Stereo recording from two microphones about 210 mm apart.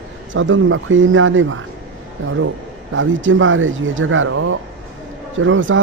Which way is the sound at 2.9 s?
65° right (ahead or behind).